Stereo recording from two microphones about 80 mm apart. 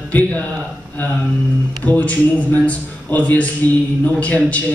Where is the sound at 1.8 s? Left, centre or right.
Centre.